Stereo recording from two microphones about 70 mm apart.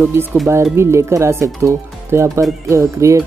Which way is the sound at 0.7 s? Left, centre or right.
Right.